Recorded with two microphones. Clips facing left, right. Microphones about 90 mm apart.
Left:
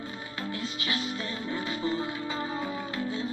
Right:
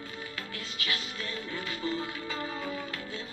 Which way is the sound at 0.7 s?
25° left (ahead or behind).